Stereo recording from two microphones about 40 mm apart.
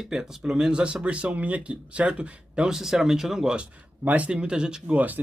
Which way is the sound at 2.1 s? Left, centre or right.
Right.